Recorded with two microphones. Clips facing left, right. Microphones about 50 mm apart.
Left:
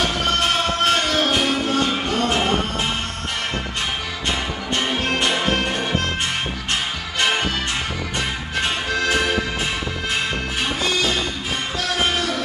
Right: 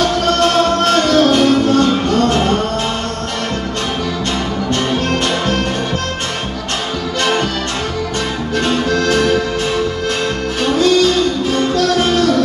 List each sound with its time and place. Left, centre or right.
0.0 s music: centre
8.5 s music: centre
10.6 s music: centre